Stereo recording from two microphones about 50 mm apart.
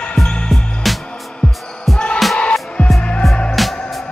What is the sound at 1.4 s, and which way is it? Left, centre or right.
Music, centre.